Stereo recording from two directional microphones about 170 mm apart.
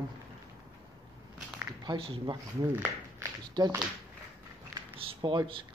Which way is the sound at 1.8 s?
30° right (ahead or behind).